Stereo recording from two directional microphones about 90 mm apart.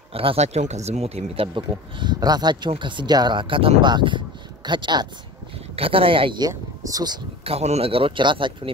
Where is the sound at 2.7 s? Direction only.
60° right (ahead or behind).